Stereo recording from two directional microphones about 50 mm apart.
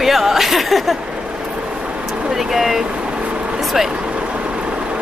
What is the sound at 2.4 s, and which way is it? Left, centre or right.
Speech, centre.